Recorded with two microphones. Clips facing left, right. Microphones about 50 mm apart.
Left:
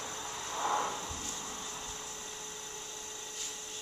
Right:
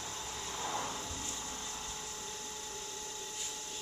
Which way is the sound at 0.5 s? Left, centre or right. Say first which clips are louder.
Left 7 dB; left.